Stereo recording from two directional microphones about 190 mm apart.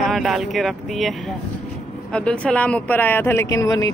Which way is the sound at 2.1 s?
5° left (ahead or behind).